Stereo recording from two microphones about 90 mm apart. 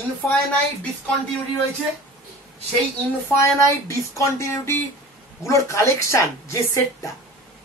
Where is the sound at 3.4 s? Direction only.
35° left (ahead or behind).